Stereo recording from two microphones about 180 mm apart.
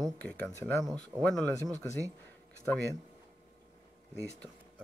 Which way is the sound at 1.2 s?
5° left (ahead or behind).